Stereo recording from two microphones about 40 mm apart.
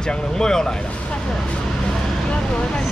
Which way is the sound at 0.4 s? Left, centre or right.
Centre.